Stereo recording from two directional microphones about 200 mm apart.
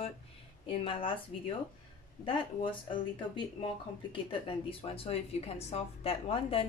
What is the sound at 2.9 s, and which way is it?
A woman's voice, 25° left (ahead or behind).